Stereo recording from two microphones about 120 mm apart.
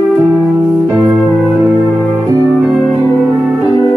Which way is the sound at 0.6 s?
20° right (ahead or behind).